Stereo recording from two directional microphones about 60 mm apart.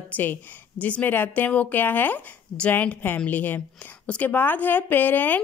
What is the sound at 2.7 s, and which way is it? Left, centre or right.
A woman's voice, left.